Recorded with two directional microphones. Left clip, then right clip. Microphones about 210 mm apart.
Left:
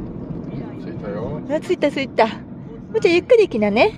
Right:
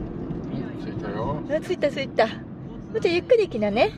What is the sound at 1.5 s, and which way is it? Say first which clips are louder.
A woman's voice: left 5 dB; 25° left (ahead or behind).